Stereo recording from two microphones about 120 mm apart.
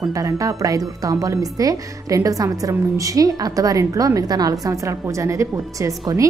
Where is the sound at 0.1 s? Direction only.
30° right (ahead or behind).